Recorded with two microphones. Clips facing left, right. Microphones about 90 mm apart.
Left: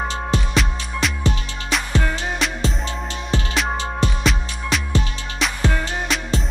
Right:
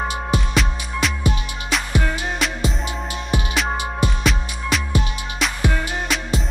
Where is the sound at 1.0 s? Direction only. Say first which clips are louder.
Even; centre (ahead or behind).